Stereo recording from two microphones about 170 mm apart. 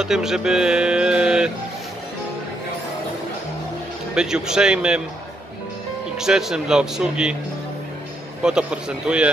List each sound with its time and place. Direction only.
0.0 s speech: 5° right (ahead or behind)
4.1 s speech: 5° right (ahead or behind)
6.1 s speech: 5° right (ahead or behind)
8.4 s speech: 5° right (ahead or behind)